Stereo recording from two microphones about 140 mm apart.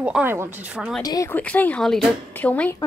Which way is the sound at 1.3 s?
10° left (ahead or behind).